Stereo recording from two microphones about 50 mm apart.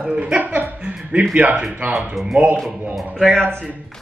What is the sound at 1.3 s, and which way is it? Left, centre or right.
A woman's voice, centre.